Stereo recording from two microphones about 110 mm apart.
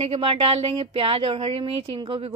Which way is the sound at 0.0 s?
60° right (ahead or behind).